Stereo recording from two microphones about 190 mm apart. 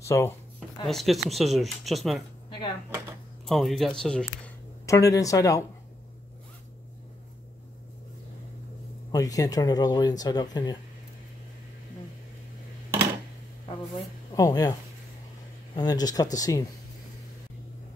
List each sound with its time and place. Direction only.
0.0 s speech: 15° left (ahead or behind)
0.8 s speech: centre (ahead or behind)
3.4 s speech: centre (ahead or behind)
4.8 s speech: 15° left (ahead or behind)
9.1 s speech: 20° left (ahead or behind)
14.3 s speech: 20° left (ahead or behind)
15.7 s speech: 20° left (ahead or behind)